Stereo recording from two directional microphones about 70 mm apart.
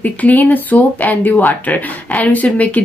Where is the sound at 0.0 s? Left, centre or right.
Left.